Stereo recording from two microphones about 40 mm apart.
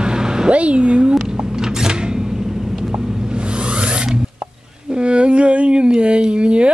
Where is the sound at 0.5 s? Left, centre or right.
Right.